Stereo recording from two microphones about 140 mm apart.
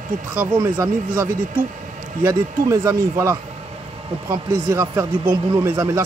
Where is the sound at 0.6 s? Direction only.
25° right (ahead or behind).